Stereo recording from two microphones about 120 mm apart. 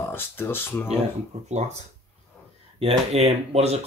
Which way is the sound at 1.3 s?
60° right (ahead or behind).